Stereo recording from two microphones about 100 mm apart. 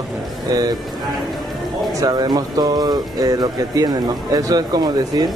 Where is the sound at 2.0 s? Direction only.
40° right (ahead or behind).